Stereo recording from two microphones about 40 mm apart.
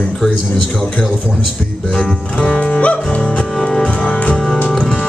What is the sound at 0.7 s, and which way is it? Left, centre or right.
Speech, left.